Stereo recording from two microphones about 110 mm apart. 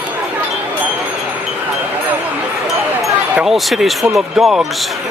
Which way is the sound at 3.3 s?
5° right (ahead or behind).